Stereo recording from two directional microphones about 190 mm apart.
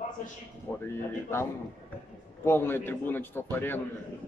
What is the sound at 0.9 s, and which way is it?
Speech, 15° left (ahead or behind).